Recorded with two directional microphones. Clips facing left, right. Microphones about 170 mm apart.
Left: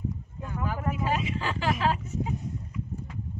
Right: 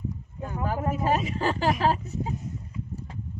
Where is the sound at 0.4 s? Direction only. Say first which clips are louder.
Right 4 dB; 40° right (ahead or behind).